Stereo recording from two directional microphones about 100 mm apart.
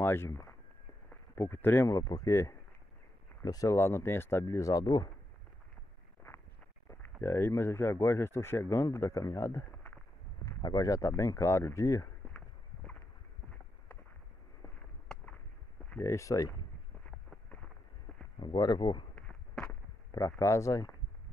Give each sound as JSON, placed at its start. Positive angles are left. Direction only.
{"t": 0.0, "sound": "speech", "side_deg": 25}
{"t": 1.9, "sound": "speech", "side_deg": 35}
{"t": 6.2, "sound": "a sound", "side_deg": 25}
{"t": 6.9, "sound": "speech", "side_deg": 25}
{"t": 10.4, "sound": "speech", "side_deg": 40}
{"t": 12.3, "sound": "a sound", "side_deg": 15}
{"t": 16.0, "sound": "speech", "side_deg": 30}
{"t": 18.4, "sound": "speech", "side_deg": 45}
{"t": 19.1, "sound": "a sound", "side_deg": 15}
{"t": 20.1, "sound": "speech", "side_deg": 35}